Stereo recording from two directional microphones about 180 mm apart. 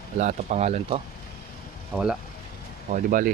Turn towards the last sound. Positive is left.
turn(degrees=-50)  # may be behind; listen again after turning